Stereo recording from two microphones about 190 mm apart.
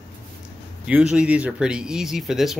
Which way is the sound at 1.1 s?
5° right (ahead or behind).